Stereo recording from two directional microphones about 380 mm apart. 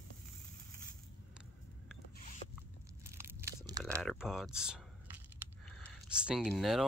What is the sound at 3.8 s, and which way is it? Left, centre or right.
Speech, centre.